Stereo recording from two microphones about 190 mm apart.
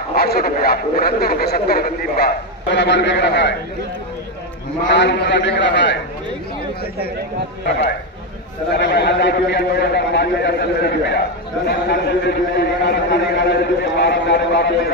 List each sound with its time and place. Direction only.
0.1 s speech: 55° left (ahead or behind)
4.8 s a man's voice: 70° left (ahead or behind)
8.7 s a man's voice: 60° left (ahead or behind)